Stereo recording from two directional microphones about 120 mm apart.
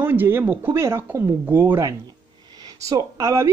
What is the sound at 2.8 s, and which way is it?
Speech, 25° right (ahead or behind).